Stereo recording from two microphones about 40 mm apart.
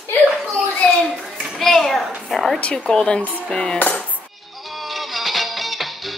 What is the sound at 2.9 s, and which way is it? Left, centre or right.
Cutlery, left.